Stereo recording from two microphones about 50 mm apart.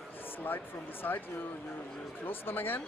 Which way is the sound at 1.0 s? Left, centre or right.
Left.